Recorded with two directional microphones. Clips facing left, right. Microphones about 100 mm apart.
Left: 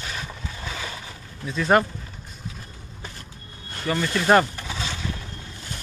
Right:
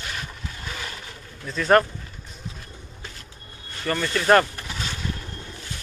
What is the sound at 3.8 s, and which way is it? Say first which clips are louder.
Speech: even; 5° left (ahead or behind).